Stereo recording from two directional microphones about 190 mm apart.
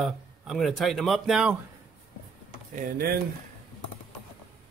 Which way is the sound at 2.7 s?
55° right (ahead or behind).